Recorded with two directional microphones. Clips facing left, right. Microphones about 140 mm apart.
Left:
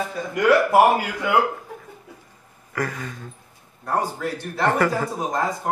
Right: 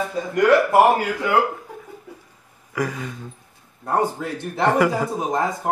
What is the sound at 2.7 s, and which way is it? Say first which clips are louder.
Speech: right 2 dB; 10° right (ahead or behind).